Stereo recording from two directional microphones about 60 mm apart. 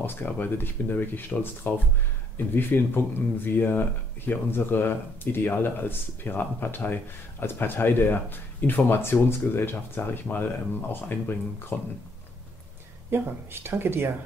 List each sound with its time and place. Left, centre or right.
0.0 s speech: left
13.1 s speech: right